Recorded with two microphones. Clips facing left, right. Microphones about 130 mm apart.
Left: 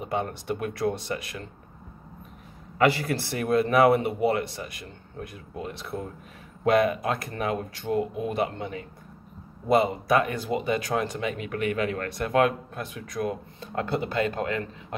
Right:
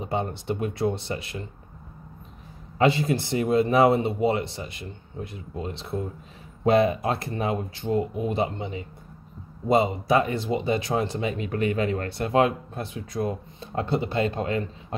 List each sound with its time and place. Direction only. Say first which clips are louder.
0.0 s speech: right 1 dB; 25° right (ahead or behind)
2.8 s speech: right 1 dB; 20° right (ahead or behind)